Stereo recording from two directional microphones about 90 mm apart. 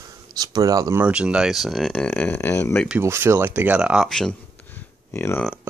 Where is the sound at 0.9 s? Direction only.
15° right (ahead or behind).